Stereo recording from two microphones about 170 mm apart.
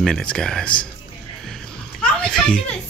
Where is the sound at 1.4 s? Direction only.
5° left (ahead or behind).